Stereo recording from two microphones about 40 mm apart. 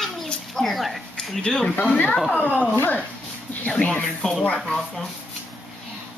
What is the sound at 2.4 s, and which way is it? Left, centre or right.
Speech, left.